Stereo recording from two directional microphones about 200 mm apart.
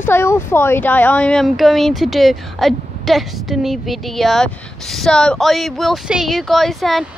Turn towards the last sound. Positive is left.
turn(degrees=0)  # may be behind; listen again after turning